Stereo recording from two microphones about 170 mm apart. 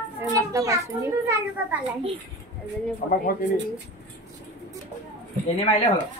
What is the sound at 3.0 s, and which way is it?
Speech, 55° left (ahead or behind).